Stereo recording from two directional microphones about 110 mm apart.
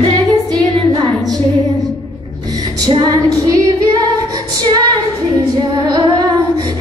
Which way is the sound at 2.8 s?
35° right (ahead or behind).